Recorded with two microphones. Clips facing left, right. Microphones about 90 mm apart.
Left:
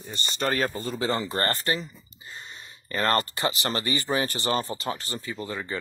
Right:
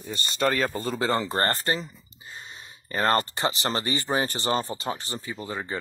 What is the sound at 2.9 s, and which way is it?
Speech, 15° right (ahead or behind).